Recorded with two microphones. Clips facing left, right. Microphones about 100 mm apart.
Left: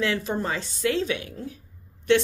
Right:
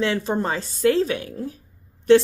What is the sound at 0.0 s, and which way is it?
A woman's voice, 30° right (ahead or behind).